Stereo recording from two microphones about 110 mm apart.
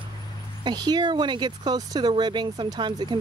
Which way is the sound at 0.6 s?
40° right (ahead or behind).